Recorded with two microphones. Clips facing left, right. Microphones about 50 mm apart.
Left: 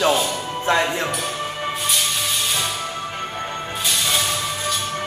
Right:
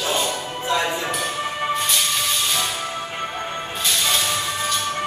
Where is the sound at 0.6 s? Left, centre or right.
Left.